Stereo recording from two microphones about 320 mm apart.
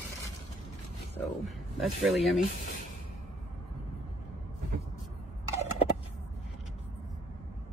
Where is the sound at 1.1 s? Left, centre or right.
Centre.